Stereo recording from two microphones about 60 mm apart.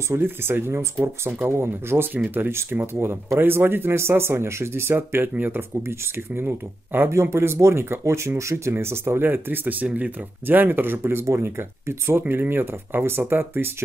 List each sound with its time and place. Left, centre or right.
0.1 s speech: right
7.1 s speech: right